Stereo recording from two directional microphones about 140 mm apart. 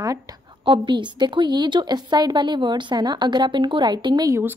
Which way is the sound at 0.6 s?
35° right (ahead or behind).